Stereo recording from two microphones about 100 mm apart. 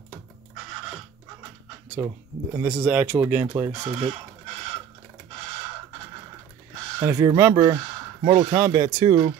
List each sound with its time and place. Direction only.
2.0 s speech: 15° right (ahead or behind)
3.8 s speech: 90° right
7.0 s speech: 40° right (ahead or behind)